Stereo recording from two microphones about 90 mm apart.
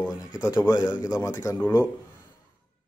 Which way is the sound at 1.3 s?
35° left (ahead or behind).